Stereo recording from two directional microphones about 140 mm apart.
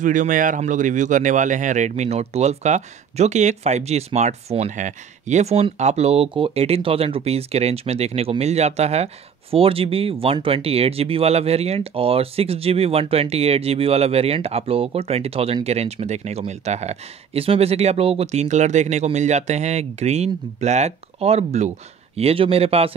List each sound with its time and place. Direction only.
0.0 s speech: 65° right (ahead or behind); by 22.9 s 45° right (ahead or behind)